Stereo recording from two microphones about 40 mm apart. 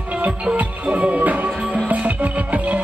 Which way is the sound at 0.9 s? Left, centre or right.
Right.